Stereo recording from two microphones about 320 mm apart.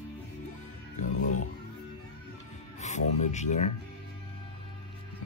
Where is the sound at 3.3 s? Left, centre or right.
Left.